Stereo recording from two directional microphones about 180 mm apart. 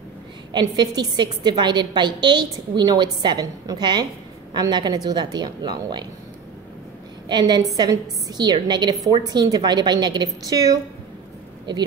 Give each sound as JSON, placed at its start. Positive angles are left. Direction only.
{"t": 0.5, "sound": "a woman's voice", "side_deg": -25}
{"t": 7.2, "sound": "a woman's voice", "side_deg": -25}